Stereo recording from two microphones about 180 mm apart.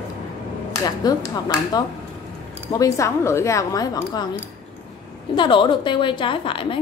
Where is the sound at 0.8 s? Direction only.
20° left (ahead or behind).